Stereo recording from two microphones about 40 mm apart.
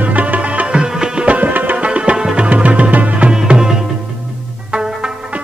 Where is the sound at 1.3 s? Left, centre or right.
Right.